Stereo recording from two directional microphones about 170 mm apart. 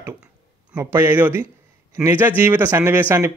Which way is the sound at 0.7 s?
15° right (ahead or behind).